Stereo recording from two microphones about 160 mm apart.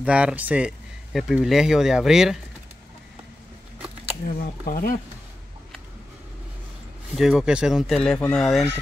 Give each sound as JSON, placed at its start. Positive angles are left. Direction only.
{"t": 0.0, "sound": "speech", "side_deg": -5}
{"t": 3.8, "sound": "a sound", "side_deg": -10}
{"t": 4.3, "sound": "speech", "side_deg": 60}
{"t": 7.2, "sound": "speech", "side_deg": -5}